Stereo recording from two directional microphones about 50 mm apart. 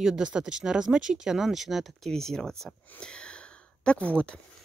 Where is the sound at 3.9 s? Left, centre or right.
Left.